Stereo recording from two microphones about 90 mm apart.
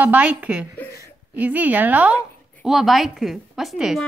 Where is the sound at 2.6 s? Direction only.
5° right (ahead or behind).